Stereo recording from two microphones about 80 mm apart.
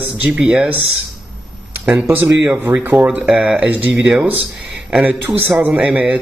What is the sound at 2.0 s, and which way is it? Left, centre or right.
A man's voice, right.